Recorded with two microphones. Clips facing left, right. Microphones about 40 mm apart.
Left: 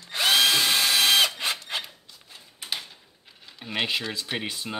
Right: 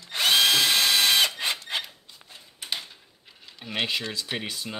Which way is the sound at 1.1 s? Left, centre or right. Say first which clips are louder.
Left 1 dB; centre.